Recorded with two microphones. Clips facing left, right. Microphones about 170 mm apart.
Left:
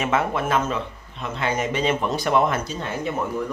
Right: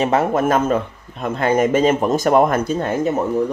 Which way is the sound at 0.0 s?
40° right (ahead or behind).